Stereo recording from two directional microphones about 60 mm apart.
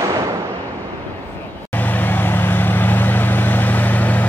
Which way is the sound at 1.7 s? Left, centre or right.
Left.